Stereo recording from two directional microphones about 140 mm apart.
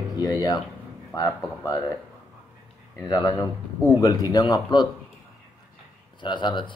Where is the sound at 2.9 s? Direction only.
25° left (ahead or behind).